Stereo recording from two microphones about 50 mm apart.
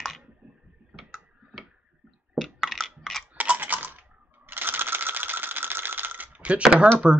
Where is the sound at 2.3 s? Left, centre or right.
Centre.